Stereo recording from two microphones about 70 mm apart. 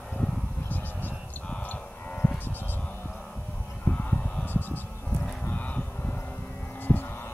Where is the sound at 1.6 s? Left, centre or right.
Left.